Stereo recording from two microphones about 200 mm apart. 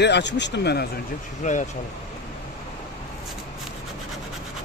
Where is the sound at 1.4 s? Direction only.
40° left (ahead or behind).